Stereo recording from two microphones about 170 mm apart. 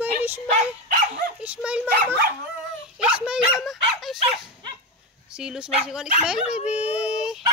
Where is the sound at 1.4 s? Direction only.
10° right (ahead or behind).